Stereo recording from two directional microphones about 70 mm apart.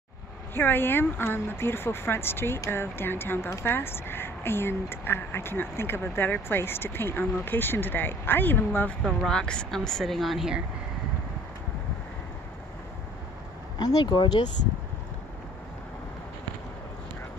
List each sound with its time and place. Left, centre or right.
0.6 s a woman's voice: left
9.0 s speech: centre
13.7 s speech: left